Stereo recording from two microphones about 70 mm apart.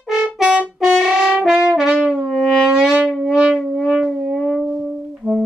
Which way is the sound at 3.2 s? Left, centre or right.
Centre.